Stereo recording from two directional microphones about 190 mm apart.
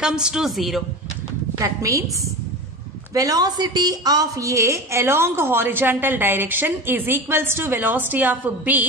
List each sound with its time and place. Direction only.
0.0 s a woman's voice: 5° right (ahead or behind)
1.6 s a woman's voice: 15° right (ahead or behind)
3.2 s a woman's voice: 20° right (ahead or behind)